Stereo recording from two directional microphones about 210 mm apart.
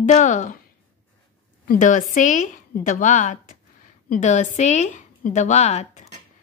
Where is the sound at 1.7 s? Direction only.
35° left (ahead or behind).